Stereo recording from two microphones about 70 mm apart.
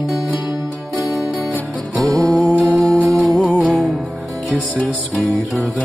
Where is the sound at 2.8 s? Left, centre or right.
Centre.